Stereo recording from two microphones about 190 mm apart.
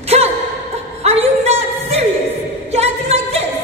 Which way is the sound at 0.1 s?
35° right (ahead or behind).